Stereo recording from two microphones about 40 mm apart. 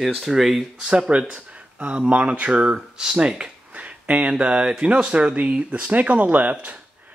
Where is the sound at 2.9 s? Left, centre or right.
Right.